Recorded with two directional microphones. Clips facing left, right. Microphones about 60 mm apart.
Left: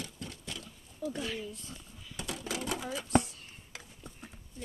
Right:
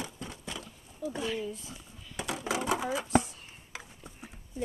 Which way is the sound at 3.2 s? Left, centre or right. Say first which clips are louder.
Right 2 dB; centre.